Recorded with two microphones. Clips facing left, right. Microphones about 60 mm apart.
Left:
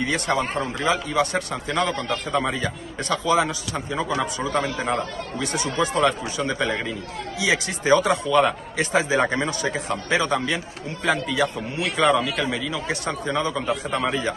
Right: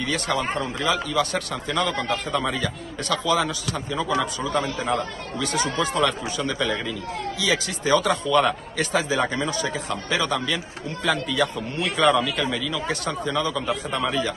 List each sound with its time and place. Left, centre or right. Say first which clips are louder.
0.0 s speech: left 2 dB; left
1.9 s a man's voice: right 1 dB; centre
2.3 s a man's voice: left 3 dB; centre
3.1 s speech: left 2 dB; left
4.6 s a man's voice: left 1 dB; centre
4.9 s speech: even; left
8.4 s a man's voice: left 1 dB; centre
8.9 s speech: left 3 dB; left
11.1 s a man's voice: left 1 dB; centre; by 14.3 s left